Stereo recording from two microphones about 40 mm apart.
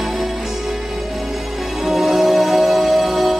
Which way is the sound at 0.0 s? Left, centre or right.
Centre.